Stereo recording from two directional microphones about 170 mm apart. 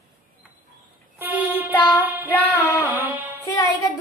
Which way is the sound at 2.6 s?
10° right (ahead or behind).